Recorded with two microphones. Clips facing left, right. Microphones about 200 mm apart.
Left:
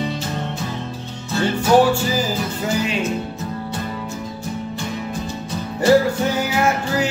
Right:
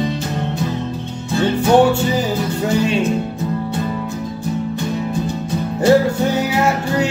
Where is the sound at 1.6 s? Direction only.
25° right (ahead or behind).